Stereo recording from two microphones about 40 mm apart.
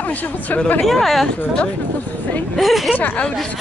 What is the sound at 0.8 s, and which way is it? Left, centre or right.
Speech, centre.